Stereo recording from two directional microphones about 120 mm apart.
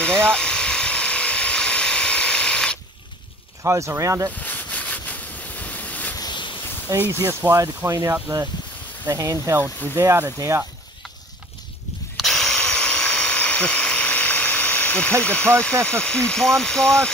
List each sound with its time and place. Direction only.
0.0 s electric toothbrush: 5° left (ahead or behind)
3.6 s speech: 25° right (ahead or behind)
4.4 s ocean: 15° left (ahead or behind)
6.1 s a sound: 40° left (ahead or behind)
6.9 s speech: 25° right (ahead or behind)
12.2 s electric toothbrush: 5° left (ahead or behind)
15.2 s speech: 10° left (ahead or behind)